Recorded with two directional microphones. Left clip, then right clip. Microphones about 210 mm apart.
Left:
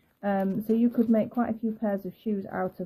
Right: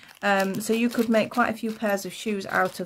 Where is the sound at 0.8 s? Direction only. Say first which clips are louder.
Right 4 dB; 15° right (ahead or behind).